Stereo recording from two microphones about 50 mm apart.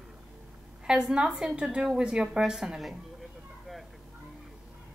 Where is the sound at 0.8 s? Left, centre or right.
Centre.